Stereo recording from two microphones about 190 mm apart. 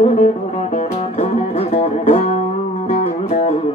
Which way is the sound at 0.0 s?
35° left (ahead or behind).